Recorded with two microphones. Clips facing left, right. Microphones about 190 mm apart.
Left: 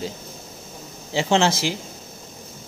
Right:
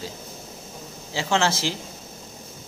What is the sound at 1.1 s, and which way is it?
Speech, 20° left (ahead or behind).